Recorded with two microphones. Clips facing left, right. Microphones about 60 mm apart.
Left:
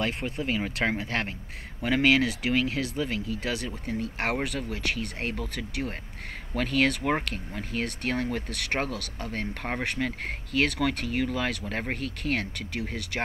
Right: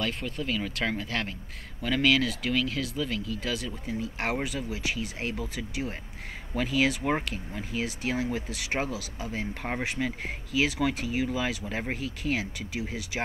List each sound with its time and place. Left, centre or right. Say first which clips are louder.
0.2 s speech: left 2 dB; left
0.9 s a man's voice: left 2 dB; centre